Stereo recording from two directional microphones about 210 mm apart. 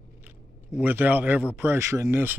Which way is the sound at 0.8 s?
10° right (ahead or behind).